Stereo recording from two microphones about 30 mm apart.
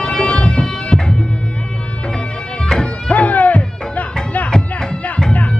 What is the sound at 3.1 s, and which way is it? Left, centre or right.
Music, left.